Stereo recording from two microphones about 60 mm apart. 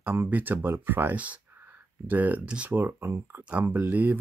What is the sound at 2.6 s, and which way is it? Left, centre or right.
Speech, right.